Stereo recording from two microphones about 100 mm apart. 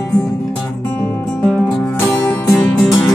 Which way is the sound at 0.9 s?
15° left (ahead or behind).